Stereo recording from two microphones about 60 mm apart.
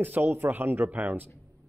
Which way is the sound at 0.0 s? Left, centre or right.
Right.